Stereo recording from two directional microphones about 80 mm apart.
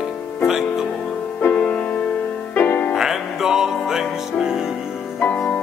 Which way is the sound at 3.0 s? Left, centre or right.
Centre.